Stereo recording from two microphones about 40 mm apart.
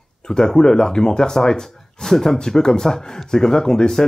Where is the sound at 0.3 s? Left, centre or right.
Centre.